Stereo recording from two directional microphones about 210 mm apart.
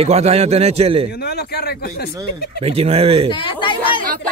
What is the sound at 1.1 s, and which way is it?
Speech, 50° left (ahead or behind).